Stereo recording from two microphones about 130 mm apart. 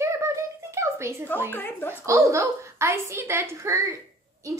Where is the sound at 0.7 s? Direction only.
20° right (ahead or behind).